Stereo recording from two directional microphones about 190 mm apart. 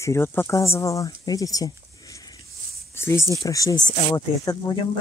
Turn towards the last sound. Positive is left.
turn(degrees=20)  # may be behind; listen again after turning